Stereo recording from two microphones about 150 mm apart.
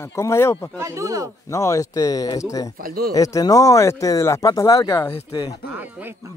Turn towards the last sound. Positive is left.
turn(degrees=-10)  # may be behind; listen again after turning